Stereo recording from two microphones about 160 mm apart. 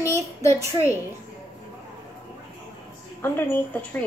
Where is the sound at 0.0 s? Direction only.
20° left (ahead or behind).